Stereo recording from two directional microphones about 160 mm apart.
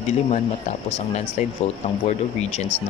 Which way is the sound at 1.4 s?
45° left (ahead or behind).